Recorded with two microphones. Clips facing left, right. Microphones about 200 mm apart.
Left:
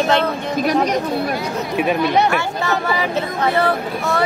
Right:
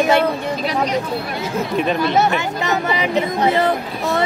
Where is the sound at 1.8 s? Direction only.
10° left (ahead or behind).